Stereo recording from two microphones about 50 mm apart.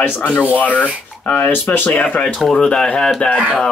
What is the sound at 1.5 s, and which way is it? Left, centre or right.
Speech, left.